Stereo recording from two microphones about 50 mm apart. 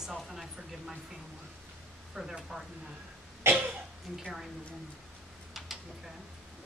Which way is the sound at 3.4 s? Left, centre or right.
Right.